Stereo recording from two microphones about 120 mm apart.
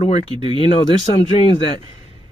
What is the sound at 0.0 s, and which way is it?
A man's voice, 60° left (ahead or behind).